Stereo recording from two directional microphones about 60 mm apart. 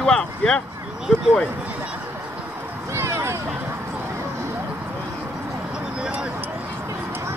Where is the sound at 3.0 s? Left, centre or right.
Right.